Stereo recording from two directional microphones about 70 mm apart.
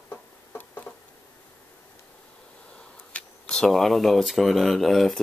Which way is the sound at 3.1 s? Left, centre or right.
Centre.